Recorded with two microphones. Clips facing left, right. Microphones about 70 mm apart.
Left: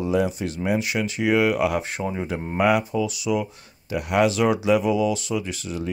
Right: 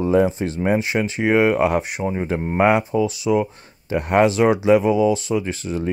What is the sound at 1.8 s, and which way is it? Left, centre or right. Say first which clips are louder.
Speech: right 4 dB; right.